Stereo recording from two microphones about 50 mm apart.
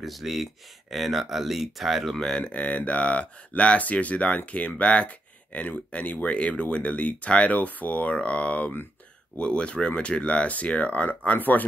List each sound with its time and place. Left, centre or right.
0.0 s speech: centre
2.1 s speech: centre
2.4 s speech: left